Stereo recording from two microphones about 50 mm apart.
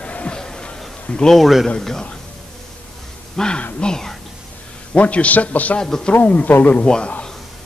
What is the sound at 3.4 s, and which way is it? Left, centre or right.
Speech, centre.